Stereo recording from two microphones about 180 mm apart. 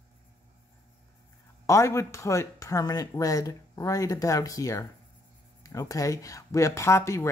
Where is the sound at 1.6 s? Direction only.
15° left (ahead or behind).